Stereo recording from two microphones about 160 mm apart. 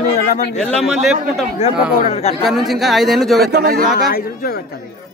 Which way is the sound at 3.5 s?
65° right (ahead or behind).